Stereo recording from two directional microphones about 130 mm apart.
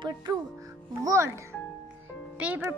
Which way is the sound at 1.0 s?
25° right (ahead or behind).